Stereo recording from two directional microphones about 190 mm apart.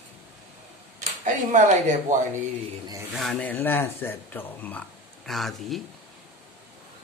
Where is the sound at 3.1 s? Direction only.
5° left (ahead or behind).